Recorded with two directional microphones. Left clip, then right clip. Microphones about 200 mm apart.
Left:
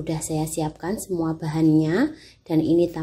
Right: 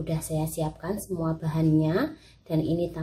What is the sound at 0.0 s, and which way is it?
Speech, 35° left (ahead or behind).